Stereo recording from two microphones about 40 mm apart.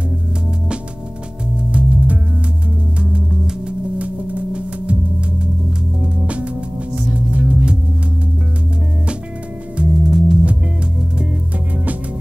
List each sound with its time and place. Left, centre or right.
1.7 s music: right
3.3 s music: centre
4.0 s music: right
6.2 s music: right
9.8 s music: centre